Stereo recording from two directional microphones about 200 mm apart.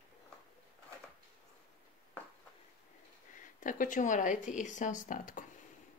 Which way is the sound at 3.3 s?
40° left (ahead or behind).